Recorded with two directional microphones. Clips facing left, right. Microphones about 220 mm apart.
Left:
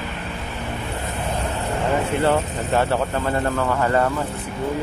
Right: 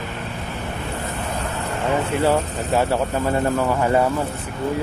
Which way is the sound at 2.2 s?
10° right (ahead or behind).